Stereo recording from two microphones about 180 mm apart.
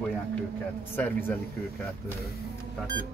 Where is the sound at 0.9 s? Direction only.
10° left (ahead or behind).